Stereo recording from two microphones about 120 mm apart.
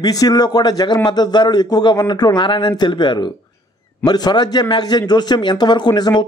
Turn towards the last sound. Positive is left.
turn(degrees=35)  # may be behind; listen again after turning